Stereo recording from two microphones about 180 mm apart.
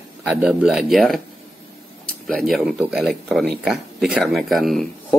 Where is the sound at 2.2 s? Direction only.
Centre (ahead or behind).